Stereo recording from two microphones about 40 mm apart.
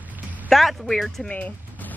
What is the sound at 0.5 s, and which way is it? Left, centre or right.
Speech, centre.